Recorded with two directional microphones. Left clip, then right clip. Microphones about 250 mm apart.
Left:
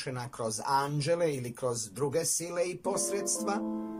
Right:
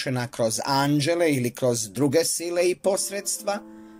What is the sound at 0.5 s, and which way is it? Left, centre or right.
Speech, right.